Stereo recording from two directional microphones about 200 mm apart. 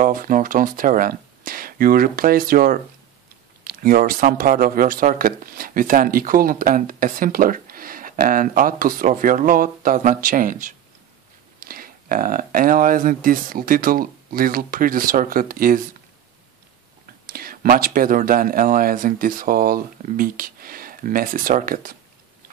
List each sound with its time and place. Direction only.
0.0 s speech: 45° right (ahead or behind)
17.3 s speech: 45° right (ahead or behind)